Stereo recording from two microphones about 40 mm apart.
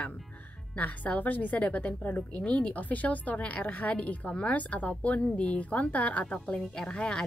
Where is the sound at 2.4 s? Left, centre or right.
Left.